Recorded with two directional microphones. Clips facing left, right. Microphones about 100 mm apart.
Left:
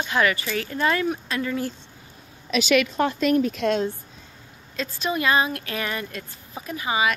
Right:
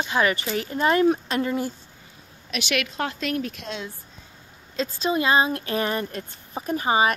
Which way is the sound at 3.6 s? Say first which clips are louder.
Left 12 dB; 85° left.